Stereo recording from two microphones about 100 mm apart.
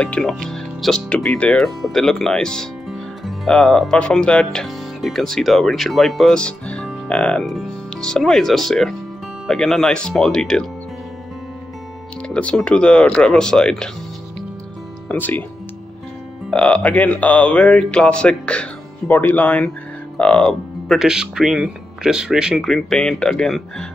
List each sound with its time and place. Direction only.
0.0 s speech: 10° left (ahead or behind)
12.3 s speech: 10° left (ahead or behind)
15.0 s speech: 15° left (ahead or behind)
16.4 s speech: 10° left (ahead or behind)
21.0 s speech: 5° right (ahead or behind)